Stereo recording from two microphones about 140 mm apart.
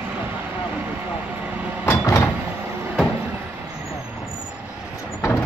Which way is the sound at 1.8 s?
20° left (ahead or behind).